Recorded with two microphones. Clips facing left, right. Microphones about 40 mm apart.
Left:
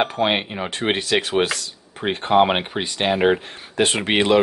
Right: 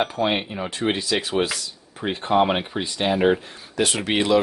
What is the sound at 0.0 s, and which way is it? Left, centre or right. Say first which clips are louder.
Speech: left 2 dB; left.